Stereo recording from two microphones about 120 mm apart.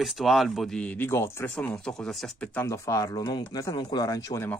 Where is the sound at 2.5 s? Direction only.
25° left (ahead or behind).